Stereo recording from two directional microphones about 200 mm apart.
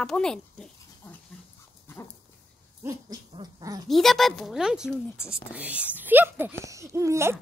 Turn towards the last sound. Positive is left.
turn(degrees=-15)  # may be behind; listen again after turning